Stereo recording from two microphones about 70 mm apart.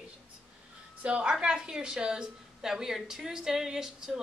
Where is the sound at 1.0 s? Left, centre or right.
Centre.